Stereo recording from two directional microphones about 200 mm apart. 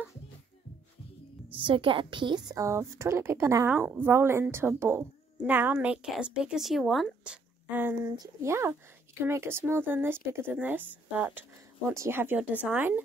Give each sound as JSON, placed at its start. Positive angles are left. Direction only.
{"t": 1.5, "sound": "a woman's voice", "side_deg": -25}